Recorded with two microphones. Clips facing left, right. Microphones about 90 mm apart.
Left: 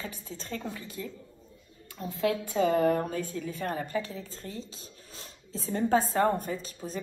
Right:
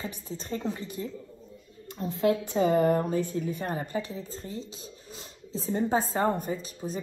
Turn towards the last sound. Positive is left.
turn(degrees=-15)  # may be behind; listen again after turning